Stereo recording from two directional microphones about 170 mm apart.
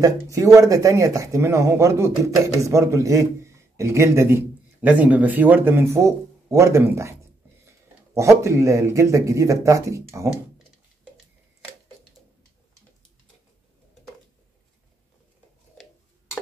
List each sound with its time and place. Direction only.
0.0 s speech: 20° right (ahead or behind)